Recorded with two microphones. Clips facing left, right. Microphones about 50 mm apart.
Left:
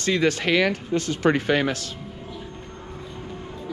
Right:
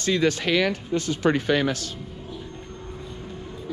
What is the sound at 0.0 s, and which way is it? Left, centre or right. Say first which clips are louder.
Speech: left 1 dB; left.